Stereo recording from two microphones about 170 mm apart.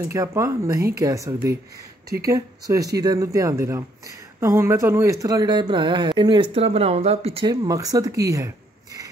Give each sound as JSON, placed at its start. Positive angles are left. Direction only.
{"t": 0.1, "sound": "speech", "side_deg": -20}
{"t": 7.6, "sound": "speech", "side_deg": -20}